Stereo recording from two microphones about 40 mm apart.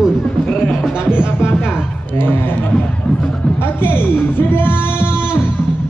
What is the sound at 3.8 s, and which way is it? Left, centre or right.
Speech, left.